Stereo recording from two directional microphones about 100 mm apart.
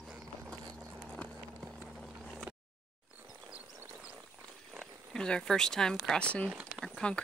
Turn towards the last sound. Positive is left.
turn(degrees=10)  # may be behind; listen again after turning